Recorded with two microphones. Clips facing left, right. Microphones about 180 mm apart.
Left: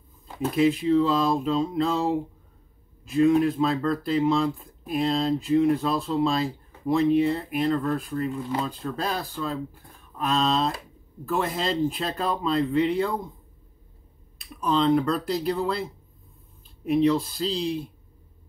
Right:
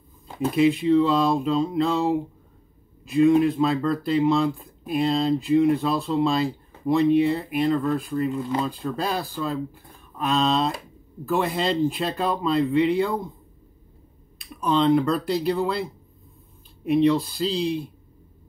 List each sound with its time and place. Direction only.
0.4 s speech: centre (ahead or behind)
14.4 s speech: centre (ahead or behind)